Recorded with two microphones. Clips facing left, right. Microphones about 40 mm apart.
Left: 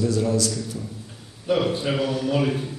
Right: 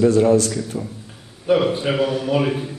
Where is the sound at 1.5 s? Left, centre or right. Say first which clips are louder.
Right 4 dB; centre.